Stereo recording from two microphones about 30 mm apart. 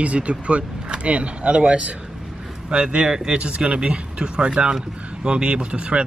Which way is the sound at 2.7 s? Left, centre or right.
Right.